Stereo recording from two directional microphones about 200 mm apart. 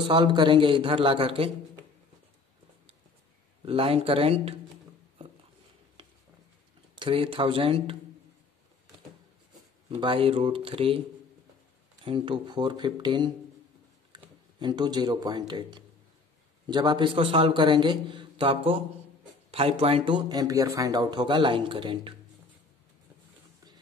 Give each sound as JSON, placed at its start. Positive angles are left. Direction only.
{"t": 0.1, "sound": "speech", "side_deg": -25}
{"t": 3.6, "sound": "speech", "side_deg": -30}
{"t": 7.0, "sound": "speech", "side_deg": -25}
{"t": 9.8, "sound": "speech", "side_deg": -25}
{"t": 12.0, "sound": "speech", "side_deg": -25}